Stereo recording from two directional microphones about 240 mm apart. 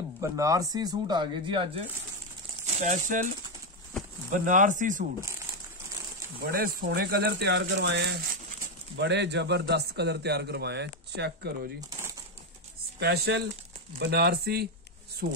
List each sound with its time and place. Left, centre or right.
0.2 s speech: centre; by 3.3 s right
4.3 s speech: right
6.4 s a man's voice: right
13.0 s a man's voice: right